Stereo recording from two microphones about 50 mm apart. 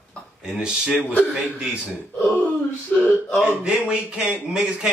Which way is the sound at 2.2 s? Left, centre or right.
Centre.